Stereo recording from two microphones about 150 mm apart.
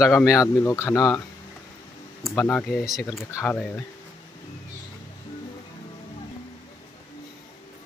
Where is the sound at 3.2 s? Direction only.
20° left (ahead or behind).